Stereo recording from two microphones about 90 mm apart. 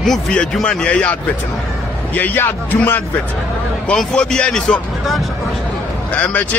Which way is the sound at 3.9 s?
10° left (ahead or behind).